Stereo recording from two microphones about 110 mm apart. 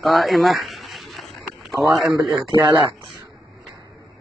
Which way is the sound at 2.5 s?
40° right (ahead or behind).